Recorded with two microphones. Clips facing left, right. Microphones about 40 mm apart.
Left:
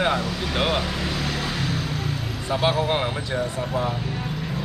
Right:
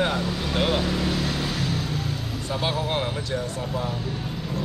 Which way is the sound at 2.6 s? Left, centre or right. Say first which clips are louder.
Left 4 dB; centre.